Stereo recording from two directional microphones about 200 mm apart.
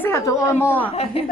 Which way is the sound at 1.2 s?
30° left (ahead or behind).